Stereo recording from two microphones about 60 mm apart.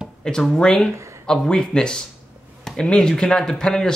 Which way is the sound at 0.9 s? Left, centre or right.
Right.